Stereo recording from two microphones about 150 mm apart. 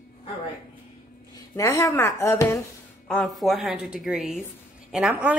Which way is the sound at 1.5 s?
20° left (ahead or behind).